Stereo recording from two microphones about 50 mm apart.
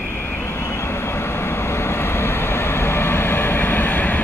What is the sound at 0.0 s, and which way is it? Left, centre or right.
Vehicle, left.